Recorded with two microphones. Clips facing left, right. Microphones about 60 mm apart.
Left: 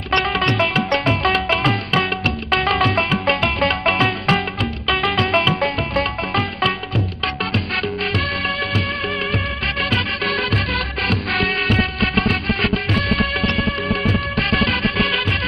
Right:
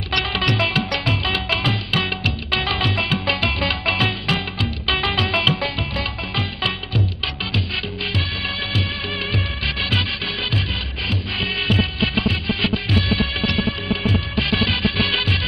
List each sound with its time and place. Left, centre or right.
0.1 s music: left
1.2 s music: left
5.1 s music: left
5.5 s music: left
10.2 s music: left